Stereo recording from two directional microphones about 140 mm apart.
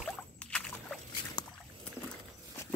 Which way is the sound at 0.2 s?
10° left (ahead or behind).